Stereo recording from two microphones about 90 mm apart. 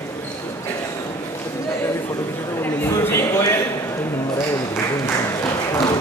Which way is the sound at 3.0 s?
30° left (ahead or behind).